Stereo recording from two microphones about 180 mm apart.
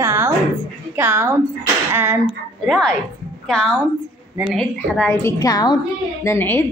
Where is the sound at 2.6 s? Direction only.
Centre (ahead or behind).